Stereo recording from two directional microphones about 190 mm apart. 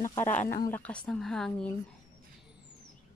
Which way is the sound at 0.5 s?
10° left (ahead or behind).